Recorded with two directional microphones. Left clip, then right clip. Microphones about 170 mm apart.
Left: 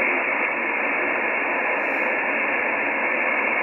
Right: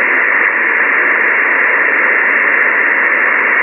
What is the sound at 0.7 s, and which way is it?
Radio, 40° right (ahead or behind).